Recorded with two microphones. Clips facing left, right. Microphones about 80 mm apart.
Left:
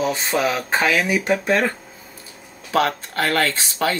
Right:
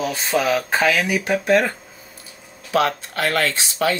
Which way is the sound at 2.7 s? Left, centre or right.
Left.